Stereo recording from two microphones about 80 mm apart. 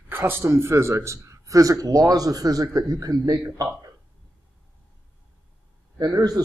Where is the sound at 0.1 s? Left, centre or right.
Right.